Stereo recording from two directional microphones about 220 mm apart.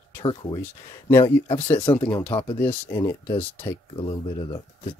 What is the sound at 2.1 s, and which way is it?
Speech, 10° left (ahead or behind).